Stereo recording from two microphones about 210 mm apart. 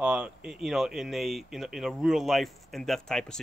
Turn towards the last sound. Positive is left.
turn(degrees=0)  # may be behind; listen again after turning